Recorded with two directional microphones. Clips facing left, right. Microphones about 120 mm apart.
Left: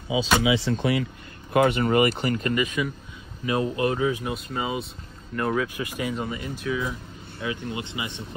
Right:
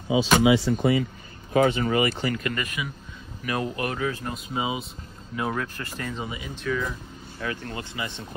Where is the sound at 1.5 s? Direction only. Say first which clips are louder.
Left 1 dB; 50° left (ahead or behind).